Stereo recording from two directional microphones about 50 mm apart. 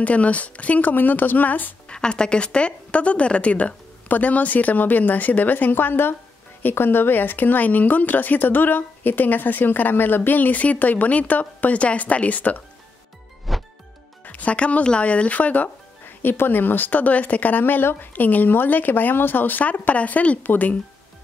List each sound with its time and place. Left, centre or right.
0.0 s speech: left
1.9 s a woman's voice: centre
13.5 s music: centre
14.2 s a woman's voice: left
16.2 s speech: left